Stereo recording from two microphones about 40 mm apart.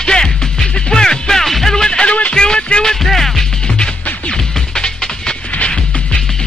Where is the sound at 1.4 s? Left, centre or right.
Centre.